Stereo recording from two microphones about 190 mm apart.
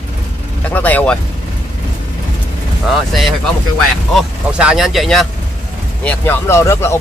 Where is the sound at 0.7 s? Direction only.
10° left (ahead or behind).